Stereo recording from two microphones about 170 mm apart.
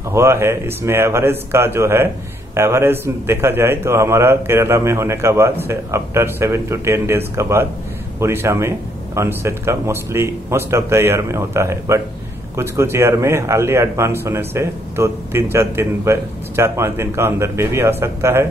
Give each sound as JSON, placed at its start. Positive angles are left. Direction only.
{"t": 0.1, "sound": "speech", "side_deg": -15}